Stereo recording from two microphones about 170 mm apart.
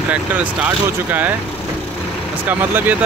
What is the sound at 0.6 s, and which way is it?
Speech, 10° right (ahead or behind).